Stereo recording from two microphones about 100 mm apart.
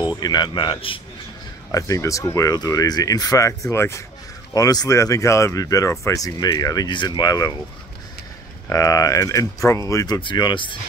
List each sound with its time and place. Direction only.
0.2 s a man's voice: 45° left (ahead or behind); by 1.0 s 60° left (ahead or behind)
1.7 s speech: 35° left (ahead or behind)
4.6 s a man's voice: 40° left (ahead or behind)
8.6 s speech: 35° left (ahead or behind)
10.2 s speech: 50° left (ahead or behind)